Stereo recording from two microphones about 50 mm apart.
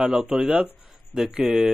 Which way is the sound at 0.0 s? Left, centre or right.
Right.